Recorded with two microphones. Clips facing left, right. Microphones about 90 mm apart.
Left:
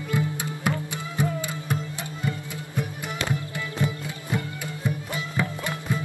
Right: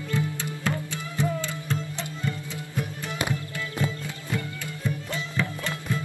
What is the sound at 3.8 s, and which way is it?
Music, 20° left (ahead or behind).